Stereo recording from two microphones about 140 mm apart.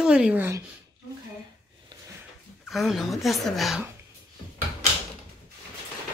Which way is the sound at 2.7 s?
Centre (ahead or behind).